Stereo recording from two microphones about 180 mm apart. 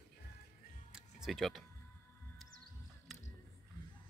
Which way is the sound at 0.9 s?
5° right (ahead or behind).